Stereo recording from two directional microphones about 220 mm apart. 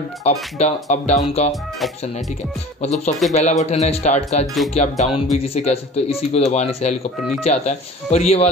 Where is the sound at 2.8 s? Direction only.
30° left (ahead or behind).